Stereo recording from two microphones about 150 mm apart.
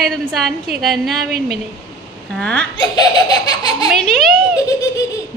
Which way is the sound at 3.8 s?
Centre (ahead or behind).